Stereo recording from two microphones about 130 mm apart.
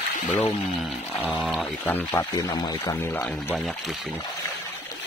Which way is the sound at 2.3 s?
30° left (ahead or behind).